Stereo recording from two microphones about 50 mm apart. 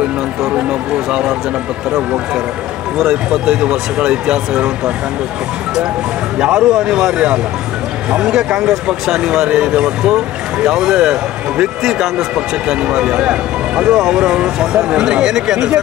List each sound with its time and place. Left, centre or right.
0.6 s speech: right
3.0 s speech: centre
6.3 s speech: centre